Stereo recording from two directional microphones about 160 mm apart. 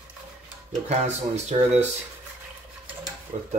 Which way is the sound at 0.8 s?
45° right (ahead or behind).